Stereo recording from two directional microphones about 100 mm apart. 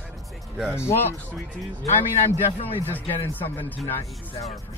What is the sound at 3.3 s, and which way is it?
Speech, 20° left (ahead or behind).